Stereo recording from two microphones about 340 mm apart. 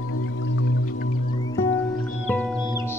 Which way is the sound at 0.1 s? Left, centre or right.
Left.